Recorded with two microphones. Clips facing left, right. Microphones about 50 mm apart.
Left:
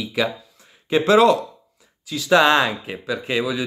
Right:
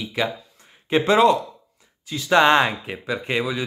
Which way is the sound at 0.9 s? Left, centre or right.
Centre.